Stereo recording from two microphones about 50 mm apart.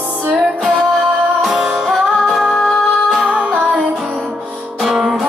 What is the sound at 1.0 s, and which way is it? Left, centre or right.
Music, right.